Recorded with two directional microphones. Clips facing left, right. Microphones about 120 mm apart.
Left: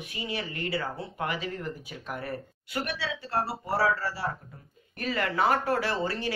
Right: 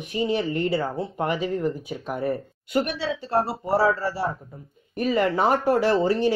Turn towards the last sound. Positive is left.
turn(degrees=-15)  # may be behind; listen again after turning